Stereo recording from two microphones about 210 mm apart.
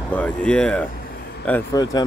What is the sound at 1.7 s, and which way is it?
Speech, 15° left (ahead or behind).